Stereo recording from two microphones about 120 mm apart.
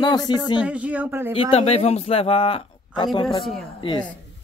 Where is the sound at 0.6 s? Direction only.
10° right (ahead or behind).